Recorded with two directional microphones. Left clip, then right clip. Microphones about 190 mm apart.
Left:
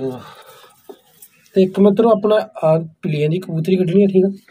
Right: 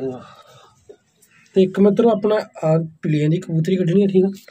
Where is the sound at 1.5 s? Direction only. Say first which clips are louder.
Left 2 dB; 5° right (ahead or behind).